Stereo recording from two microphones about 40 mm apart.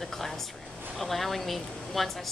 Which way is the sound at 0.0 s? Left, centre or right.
Centre.